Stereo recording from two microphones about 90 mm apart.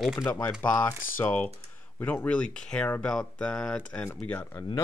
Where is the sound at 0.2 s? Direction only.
20° left (ahead or behind).